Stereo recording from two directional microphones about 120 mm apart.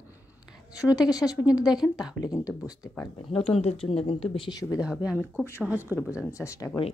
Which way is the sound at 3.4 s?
60° left (ahead or behind).